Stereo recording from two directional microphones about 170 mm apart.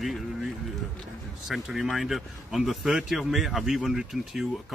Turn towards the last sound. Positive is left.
turn(degrees=-5)  # may be behind; listen again after turning